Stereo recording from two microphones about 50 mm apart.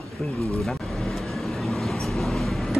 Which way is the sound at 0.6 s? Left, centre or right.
Centre.